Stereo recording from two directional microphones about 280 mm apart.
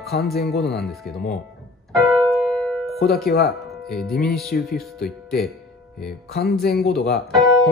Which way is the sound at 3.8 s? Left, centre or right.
Centre.